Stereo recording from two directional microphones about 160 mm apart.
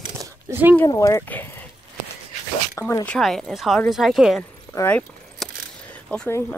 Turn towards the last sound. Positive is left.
turn(degrees=10)  # may be behind; listen again after turning